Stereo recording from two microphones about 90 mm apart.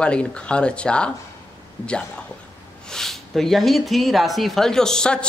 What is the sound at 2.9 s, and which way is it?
Speech, 5° left (ahead or behind).